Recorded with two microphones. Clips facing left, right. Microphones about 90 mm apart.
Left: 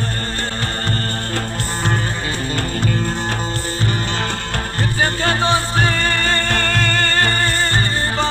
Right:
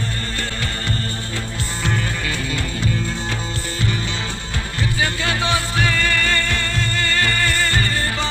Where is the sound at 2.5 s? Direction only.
50° left (ahead or behind).